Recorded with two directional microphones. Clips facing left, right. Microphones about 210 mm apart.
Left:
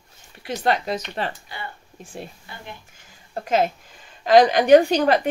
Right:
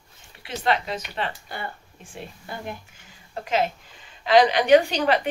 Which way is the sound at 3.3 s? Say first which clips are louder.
Left 3 dB; 45° left (ahead or behind).